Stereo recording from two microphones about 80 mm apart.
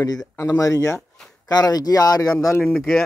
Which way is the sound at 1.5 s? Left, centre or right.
Left.